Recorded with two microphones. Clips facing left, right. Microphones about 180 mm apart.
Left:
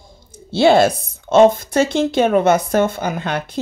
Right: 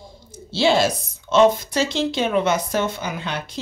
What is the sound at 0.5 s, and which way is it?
Speech, 55° left (ahead or behind).